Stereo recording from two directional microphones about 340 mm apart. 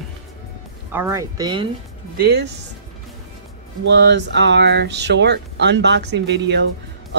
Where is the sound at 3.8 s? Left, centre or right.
Right.